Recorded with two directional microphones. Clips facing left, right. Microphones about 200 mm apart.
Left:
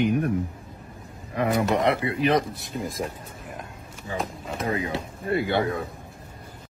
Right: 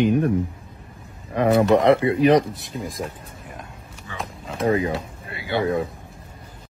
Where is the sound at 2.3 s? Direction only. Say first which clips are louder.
Right 5 dB; centre (ahead or behind).